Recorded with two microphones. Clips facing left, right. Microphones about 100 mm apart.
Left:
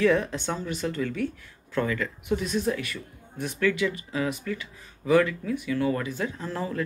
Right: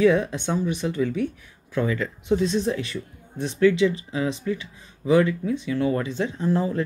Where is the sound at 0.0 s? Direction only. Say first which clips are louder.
Right 3 dB; 20° right (ahead or behind).